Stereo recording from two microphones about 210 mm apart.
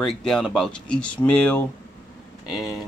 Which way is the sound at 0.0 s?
Centre (ahead or behind).